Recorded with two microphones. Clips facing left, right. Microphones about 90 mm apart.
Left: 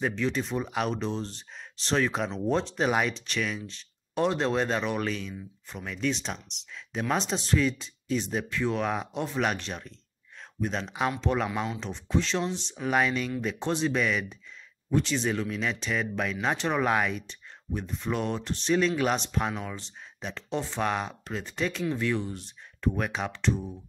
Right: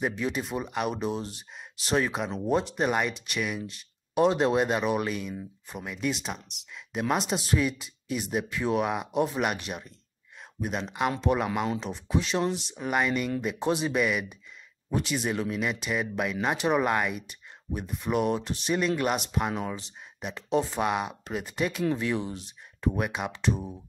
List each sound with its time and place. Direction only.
0.0 s speech: 10° right (ahead or behind)
19.5 s speech: 20° right (ahead or behind)